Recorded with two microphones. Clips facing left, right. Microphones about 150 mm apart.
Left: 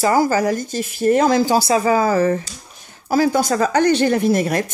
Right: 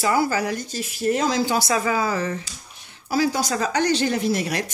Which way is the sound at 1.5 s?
30° left (ahead or behind).